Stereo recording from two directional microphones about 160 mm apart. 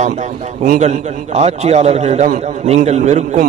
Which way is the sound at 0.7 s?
45° right (ahead or behind).